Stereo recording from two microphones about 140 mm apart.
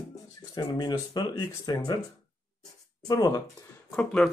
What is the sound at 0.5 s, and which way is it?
Speech, 30° left (ahead or behind).